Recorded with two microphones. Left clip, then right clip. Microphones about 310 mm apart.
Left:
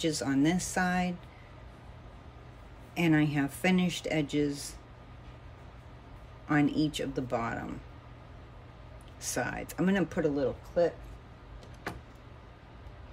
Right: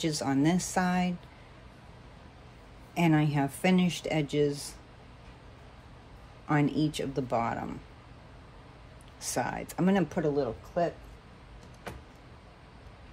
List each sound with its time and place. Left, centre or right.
0.0 s speech: centre
2.9 s speech: centre
6.4 s speech: centre
9.2 s speech: centre